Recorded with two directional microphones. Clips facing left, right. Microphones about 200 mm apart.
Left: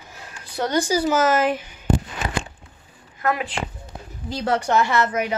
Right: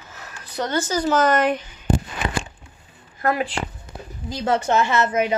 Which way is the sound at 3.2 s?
35° right (ahead or behind).